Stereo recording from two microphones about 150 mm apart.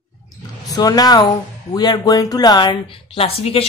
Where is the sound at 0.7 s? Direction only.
25° left (ahead or behind).